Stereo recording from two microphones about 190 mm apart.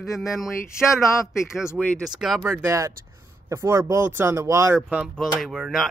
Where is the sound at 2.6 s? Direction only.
15° right (ahead or behind).